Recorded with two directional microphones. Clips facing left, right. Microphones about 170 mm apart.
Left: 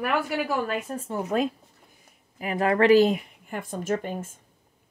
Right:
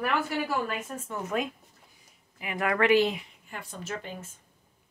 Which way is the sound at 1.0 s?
35° left (ahead or behind).